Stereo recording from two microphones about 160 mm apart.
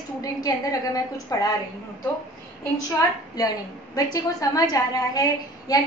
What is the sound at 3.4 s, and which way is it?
A woman's voice, 25° left (ahead or behind).